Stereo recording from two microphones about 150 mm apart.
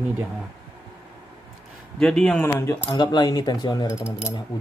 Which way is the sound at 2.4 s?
20° left (ahead or behind).